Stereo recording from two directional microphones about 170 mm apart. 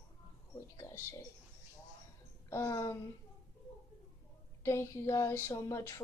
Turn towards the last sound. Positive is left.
turn(degrees=15)  # may be behind; listen again after turning